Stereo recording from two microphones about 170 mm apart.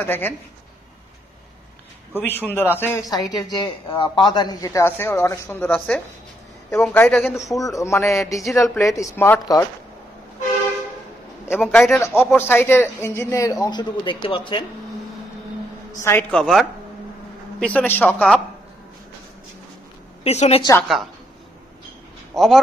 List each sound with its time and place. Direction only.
0.0 s speech: 10° left (ahead or behind)
2.1 s speech: 10° left (ahead or behind)
7.2 s a woman's voice: centre (ahead or behind)
7.5 s speech: 20° left (ahead or behind)
11.5 s a woman's voice: centre (ahead or behind)
11.9 s speech: 10° left (ahead or behind); by 14.6 s 30° left (ahead or behind)
16.0 s a woman's voice: 15° left (ahead or behind)
20.2 s a woman's voice: 40° left (ahead or behind)
22.3 s a man's voice: centre (ahead or behind)